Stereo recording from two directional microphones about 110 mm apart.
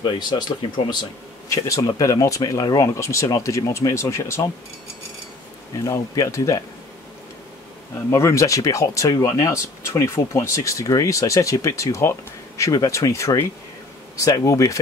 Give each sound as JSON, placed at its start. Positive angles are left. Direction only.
{"t": 0.0, "sound": "speech", "side_deg": 45}
{"t": 1.5, "sound": "speech", "side_deg": 30}
{"t": 5.9, "sound": "speech", "side_deg": 30}
{"t": 8.1, "sound": "speech", "side_deg": 25}